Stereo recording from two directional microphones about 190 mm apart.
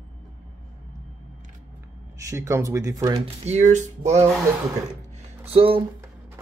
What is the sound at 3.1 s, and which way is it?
Speech, 35° right (ahead or behind).